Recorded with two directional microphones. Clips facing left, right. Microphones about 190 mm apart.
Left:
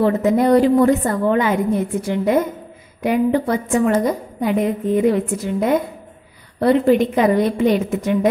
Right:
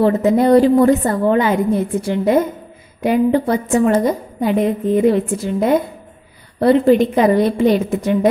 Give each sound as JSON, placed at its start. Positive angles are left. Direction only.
{"t": 0.0, "sound": "a woman's voice", "side_deg": -30}